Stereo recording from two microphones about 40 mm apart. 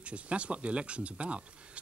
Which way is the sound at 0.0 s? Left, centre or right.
Right.